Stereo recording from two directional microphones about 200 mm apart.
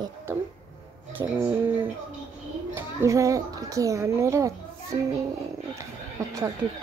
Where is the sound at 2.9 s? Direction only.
15° right (ahead or behind).